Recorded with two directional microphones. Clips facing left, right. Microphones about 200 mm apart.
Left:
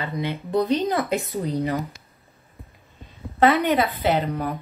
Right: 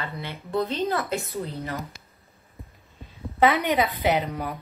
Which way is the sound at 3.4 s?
15° right (ahead or behind).